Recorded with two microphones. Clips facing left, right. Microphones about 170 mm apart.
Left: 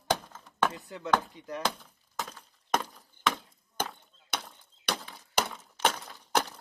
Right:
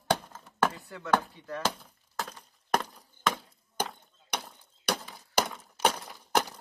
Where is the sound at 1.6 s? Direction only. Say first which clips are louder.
Right 1 dB; centre (ahead or behind).